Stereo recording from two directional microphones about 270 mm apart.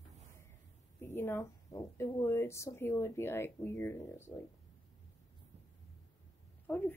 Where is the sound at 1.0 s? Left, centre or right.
Centre.